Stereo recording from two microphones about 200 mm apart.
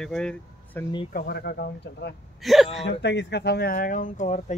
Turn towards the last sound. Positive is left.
turn(degrees=35)  # may be behind; listen again after turning